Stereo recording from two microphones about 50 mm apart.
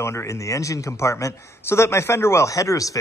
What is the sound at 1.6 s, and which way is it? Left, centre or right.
Speech, left.